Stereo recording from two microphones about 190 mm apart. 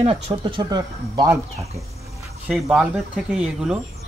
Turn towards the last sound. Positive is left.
turn(degrees=-5)  # may be behind; listen again after turning